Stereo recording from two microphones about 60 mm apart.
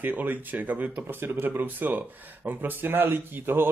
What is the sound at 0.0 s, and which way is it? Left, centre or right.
Speech, right.